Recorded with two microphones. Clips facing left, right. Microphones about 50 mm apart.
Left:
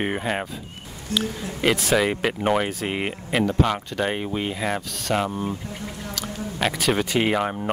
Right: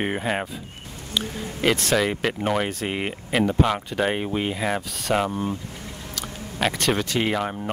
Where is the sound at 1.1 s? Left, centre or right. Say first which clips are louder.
Left 3 dB; left.